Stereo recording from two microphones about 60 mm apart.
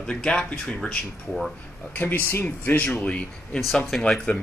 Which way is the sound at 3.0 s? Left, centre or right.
Centre.